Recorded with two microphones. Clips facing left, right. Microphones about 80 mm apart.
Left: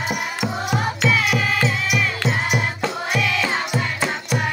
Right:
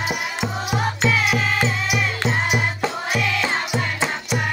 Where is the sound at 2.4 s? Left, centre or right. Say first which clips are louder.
Even; centre.